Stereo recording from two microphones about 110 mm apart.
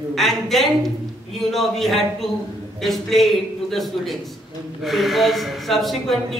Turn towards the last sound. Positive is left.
turn(degrees=0)  # may be behind; listen again after turning